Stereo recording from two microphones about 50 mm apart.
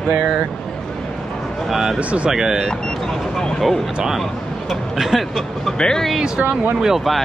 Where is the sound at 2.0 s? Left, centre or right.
Right.